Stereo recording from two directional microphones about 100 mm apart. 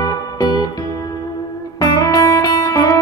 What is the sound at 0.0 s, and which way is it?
Music, 40° left (ahead or behind).